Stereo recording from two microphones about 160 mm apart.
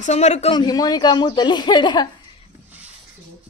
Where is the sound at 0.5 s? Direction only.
25° left (ahead or behind).